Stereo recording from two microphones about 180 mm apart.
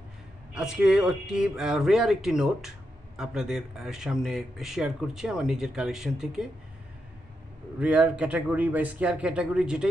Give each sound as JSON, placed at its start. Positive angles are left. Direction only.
{"t": 0.6, "sound": "speech", "side_deg": -5}
{"t": 7.8, "sound": "speech", "side_deg": -5}